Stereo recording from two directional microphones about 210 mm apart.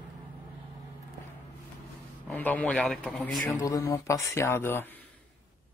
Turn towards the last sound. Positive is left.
turn(degrees=10)  # may be behind; listen again after turning